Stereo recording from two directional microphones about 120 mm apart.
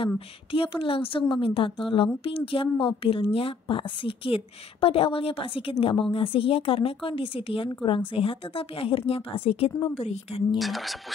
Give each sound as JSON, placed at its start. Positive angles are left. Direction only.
{"t": 0.0, "sound": "a woman's voice", "side_deg": 50}
{"t": 10.6, "sound": "speech", "side_deg": 0}